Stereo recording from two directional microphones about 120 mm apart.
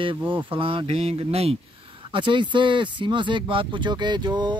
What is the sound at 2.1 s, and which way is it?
Speech, 40° right (ahead or behind).